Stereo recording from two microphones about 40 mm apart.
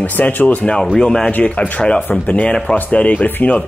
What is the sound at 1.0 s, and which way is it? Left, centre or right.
Speech, centre.